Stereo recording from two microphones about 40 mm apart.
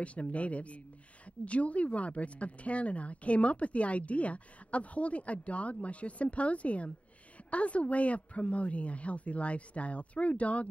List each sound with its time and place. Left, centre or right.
0.0 s a woman's voice: left